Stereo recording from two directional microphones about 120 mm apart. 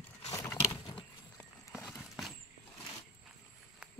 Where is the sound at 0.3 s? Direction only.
25° left (ahead or behind).